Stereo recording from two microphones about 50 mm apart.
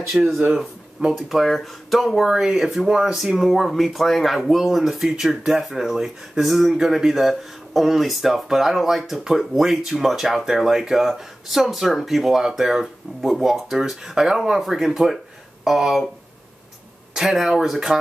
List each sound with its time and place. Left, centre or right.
0.1 s speech: right
1.1 s speech: centre
17.1 s speech: centre